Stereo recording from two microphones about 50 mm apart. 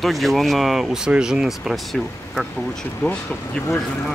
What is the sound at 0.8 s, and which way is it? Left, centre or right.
Speech, centre.